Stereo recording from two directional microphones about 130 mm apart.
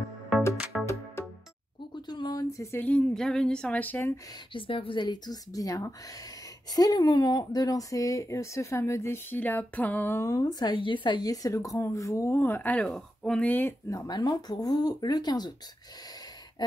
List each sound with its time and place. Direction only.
0.7 s music: 5° right (ahead or behind)
2.0 s speech: 35° left (ahead or behind); by 4.1 s 15° left (ahead or behind)
4.6 s a woman's voice: 40° left (ahead or behind); by 13.7 s 15° left (ahead or behind)
13.8 s speech: 30° left (ahead or behind)